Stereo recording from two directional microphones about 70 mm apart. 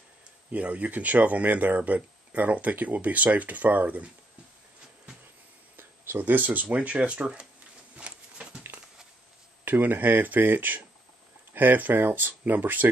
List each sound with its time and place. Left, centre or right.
0.5 s speech: right
5.8 s speech: right
8.0 s a sound: centre
9.7 s speech: right